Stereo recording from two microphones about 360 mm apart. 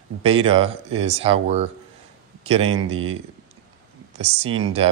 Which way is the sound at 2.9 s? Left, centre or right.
Right.